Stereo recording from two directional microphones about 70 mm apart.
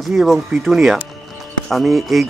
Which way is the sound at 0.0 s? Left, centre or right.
Centre.